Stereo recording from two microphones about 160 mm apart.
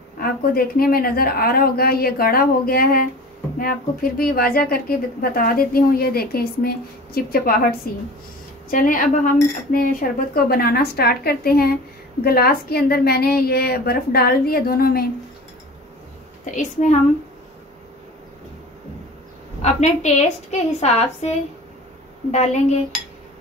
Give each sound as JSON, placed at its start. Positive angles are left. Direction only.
{"t": 0.2, "sound": "a woman's voice", "side_deg": 65}
{"t": 16.4, "sound": "a woman's voice", "side_deg": 50}
{"t": 19.6, "sound": "a woman's voice", "side_deg": 45}